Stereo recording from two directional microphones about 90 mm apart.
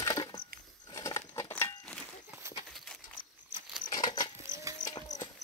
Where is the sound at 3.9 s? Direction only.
50° left (ahead or behind).